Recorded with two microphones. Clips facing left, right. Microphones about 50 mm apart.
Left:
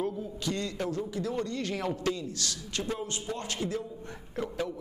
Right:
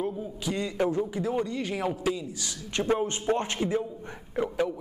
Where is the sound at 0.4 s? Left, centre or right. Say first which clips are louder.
Right 6 dB; centre.